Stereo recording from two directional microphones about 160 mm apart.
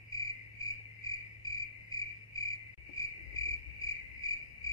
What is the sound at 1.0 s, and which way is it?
Cricket, 20° left (ahead or behind).